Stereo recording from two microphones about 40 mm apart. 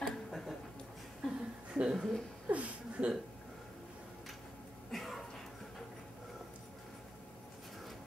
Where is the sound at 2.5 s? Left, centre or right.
Right.